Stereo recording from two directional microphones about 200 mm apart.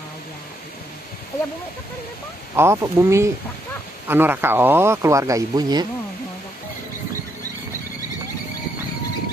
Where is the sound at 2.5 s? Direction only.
15° right (ahead or behind).